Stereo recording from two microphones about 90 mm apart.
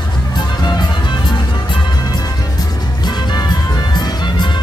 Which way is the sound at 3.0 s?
50° left (ahead or behind).